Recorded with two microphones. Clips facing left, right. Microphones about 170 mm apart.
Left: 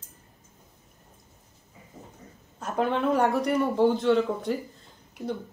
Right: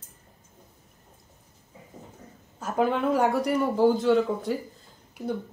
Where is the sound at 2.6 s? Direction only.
5° right (ahead or behind).